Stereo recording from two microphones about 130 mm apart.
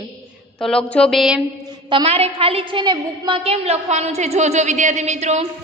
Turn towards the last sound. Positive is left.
turn(degrees=-60)  # may be behind; listen again after turning